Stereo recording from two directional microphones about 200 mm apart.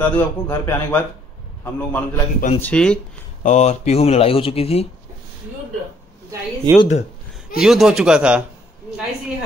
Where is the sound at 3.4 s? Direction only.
35° left (ahead or behind).